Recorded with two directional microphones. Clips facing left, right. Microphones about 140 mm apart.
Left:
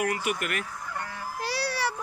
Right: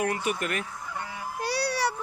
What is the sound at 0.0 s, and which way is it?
Speech, 25° right (ahead or behind).